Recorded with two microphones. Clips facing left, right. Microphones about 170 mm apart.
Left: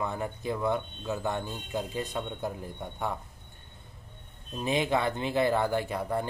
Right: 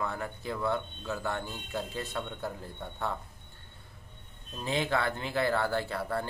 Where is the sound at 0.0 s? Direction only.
20° left (ahead or behind).